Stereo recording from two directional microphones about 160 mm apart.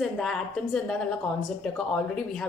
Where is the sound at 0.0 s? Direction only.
Centre (ahead or behind).